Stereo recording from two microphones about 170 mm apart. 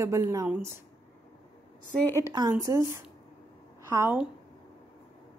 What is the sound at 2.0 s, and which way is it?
Speech, 15° left (ahead or behind).